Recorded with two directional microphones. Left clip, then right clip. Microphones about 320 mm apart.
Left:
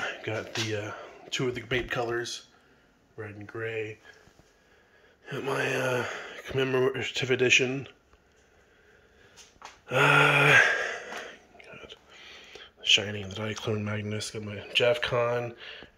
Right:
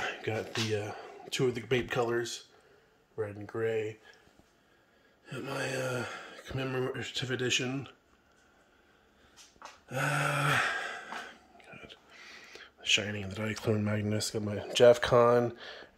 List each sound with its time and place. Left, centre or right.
0.0 s speech: centre
5.2 s speech: centre
10.5 s a sound: centre
11.5 s speech: centre